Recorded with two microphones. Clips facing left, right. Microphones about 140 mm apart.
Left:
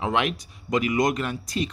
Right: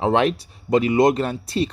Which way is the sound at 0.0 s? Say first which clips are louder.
Right 6 dB; 35° right (ahead or behind).